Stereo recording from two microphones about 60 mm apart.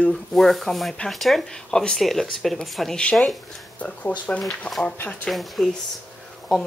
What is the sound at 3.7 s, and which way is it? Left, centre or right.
Speech, left.